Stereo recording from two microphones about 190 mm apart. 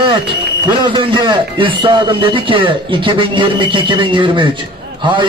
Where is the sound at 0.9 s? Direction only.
25° right (ahead or behind).